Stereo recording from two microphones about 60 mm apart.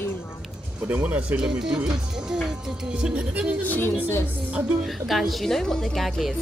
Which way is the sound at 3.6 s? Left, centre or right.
Left.